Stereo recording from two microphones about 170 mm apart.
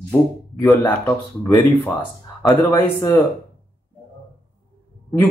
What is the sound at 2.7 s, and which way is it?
Speech, 15° left (ahead or behind).